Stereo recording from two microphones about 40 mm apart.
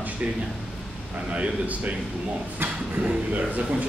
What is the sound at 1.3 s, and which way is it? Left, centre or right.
Speech, right.